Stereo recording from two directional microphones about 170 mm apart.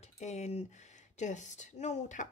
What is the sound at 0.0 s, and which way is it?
Speech, 40° left (ahead or behind).